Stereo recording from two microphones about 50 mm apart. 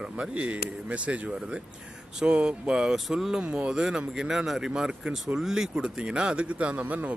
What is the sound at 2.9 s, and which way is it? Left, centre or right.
Speech, centre.